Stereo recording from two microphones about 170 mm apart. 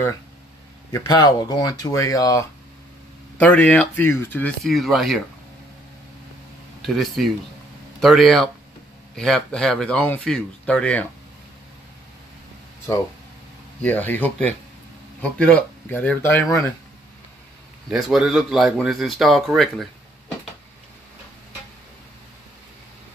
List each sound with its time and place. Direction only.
0.9 s speech: 25° left (ahead or behind)
3.3 s speech: 10° left (ahead or behind)
4.6 s a man's voice: centre (ahead or behind)
6.8 s a man's voice: centre (ahead or behind)
13.7 s speech: 10° left (ahead or behind)
17.8 s a man's voice: centre (ahead or behind)